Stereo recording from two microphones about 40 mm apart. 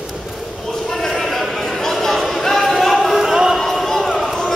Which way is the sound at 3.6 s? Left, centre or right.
Centre.